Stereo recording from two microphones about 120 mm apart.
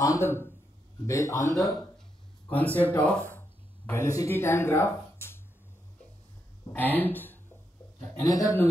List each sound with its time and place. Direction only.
0.0 s a man's voice: 25° left (ahead or behind)
1.5 s speech: centre (ahead or behind)
2.5 s speech: 15° left (ahead or behind)
3.3 s a sound: 15° left (ahead or behind)
6.7 s speech: 15° left (ahead or behind)
8.1 s a man's voice: 25° left (ahead or behind)